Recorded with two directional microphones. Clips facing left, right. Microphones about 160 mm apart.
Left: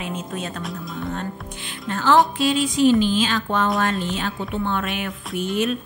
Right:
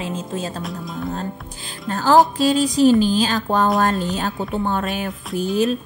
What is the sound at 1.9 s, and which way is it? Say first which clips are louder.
Speech: right 3 dB; 40° right (ahead or behind).